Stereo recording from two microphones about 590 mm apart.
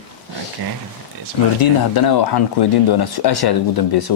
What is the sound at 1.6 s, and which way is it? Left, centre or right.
A man's voice, left.